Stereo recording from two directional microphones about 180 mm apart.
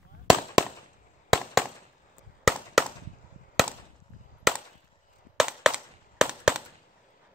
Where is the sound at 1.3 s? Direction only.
Centre (ahead or behind).